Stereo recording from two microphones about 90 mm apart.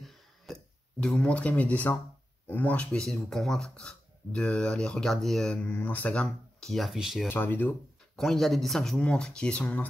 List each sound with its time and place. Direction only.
0.5 s a sound: 5° left (ahead or behind)
0.9 s speech: 10° left (ahead or behind)
5.6 s speech: 20° left (ahead or behind)
6.2 s speech: centre (ahead or behind)
7.2 s speech: 20° left (ahead or behind)
8.2 s speech: 5° left (ahead or behind)